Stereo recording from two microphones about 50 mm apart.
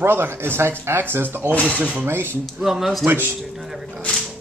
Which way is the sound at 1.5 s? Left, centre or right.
Left.